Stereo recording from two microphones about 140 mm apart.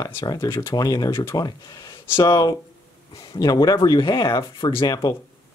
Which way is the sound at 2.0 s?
15° left (ahead or behind).